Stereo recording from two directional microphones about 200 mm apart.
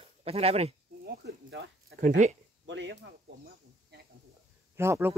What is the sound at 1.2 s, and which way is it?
Speech, 60° right (ahead or behind).